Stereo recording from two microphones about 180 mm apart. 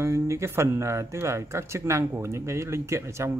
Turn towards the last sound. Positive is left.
turn(degrees=-15)  # may be behind; listen again after turning